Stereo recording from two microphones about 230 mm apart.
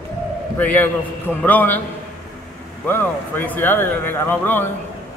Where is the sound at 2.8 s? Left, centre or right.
Centre.